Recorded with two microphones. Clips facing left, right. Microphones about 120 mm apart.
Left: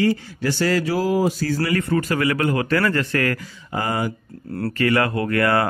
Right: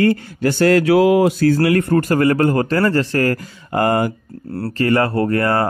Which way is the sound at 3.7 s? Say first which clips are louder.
Right 7 dB; 55° right (ahead or behind).